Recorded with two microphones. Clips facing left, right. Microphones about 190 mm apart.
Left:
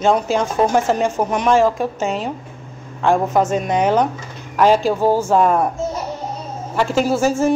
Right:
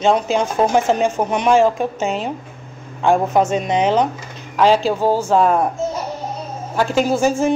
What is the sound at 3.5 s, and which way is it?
Speech, 5° left (ahead or behind).